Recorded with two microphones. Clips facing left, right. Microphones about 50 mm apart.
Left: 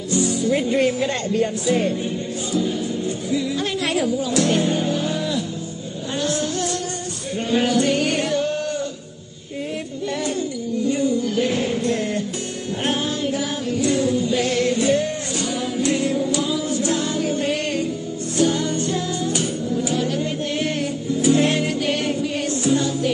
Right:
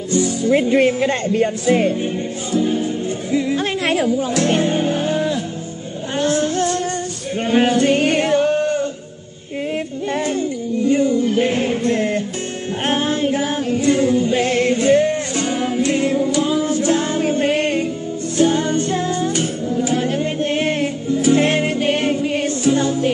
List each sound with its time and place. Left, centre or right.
0.1 s music: right
0.6 s speech: right
2.5 s music: right
6.1 s a sound: right
7.3 s male singing: right
10.2 s music: right